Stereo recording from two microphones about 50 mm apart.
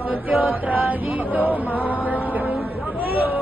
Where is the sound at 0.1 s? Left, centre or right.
Right.